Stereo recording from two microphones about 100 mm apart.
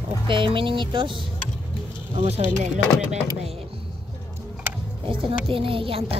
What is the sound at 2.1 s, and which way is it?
Speech, 90° right.